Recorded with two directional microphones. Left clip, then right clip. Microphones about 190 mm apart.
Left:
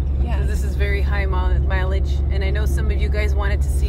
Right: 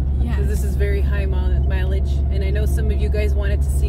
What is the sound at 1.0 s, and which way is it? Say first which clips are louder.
Speech: left 3 dB; 20° left (ahead or behind).